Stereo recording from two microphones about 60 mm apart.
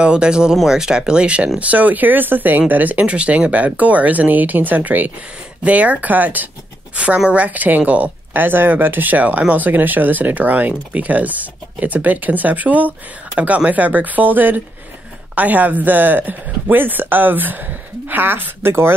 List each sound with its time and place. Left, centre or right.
0.0 s speech: centre; by 18.9 s right